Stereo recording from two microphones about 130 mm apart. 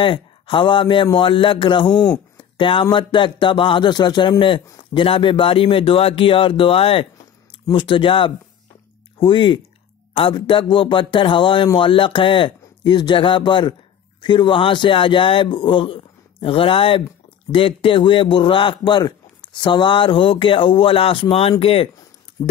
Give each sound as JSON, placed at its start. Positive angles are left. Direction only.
{"t": 0.0, "sound": "a man's voice", "side_deg": 40}
{"t": 1.9, "sound": "speech", "side_deg": 10}
{"t": 2.3, "sound": "a man's voice", "side_deg": 40}
{"t": 22.4, "sound": "speech", "side_deg": 30}